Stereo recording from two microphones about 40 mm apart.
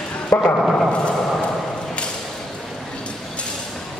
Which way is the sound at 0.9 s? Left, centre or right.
Left.